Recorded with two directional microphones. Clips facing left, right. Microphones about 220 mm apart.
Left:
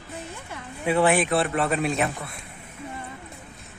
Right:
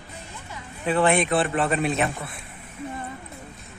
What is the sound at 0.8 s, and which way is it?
A man's voice, 10° left (ahead or behind).